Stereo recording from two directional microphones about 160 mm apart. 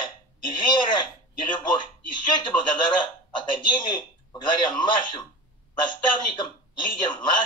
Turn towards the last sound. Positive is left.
turn(degrees=30)  # may be behind; listen again after turning